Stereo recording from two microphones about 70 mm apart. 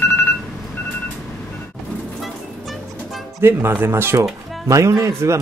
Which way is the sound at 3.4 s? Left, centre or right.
Right.